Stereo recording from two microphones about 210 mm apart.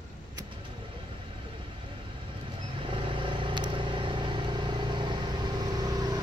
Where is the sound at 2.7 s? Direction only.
25° right (ahead or behind).